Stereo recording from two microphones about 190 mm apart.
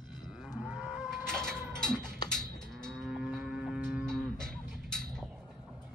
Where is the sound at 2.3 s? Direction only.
5° left (ahead or behind).